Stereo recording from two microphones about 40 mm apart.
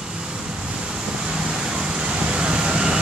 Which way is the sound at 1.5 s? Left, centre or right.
Centre.